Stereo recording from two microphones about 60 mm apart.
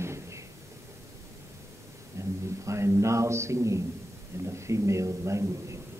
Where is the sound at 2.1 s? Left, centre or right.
Right.